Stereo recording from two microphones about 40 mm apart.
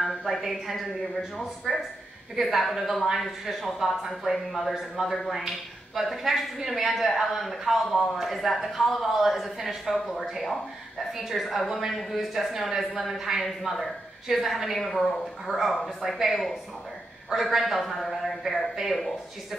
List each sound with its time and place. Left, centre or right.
0.0 s a sound: centre
0.5 s a woman's voice: centre
14.8 s a woman's voice: centre